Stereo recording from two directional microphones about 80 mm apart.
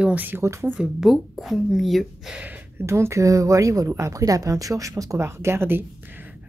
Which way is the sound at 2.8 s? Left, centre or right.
Right.